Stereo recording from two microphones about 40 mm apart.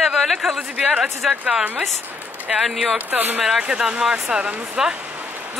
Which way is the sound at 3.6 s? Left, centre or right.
Right.